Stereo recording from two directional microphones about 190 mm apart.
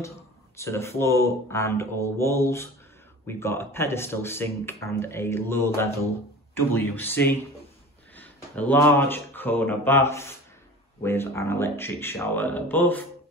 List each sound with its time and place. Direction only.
0.6 s speech: 15° left (ahead or behind)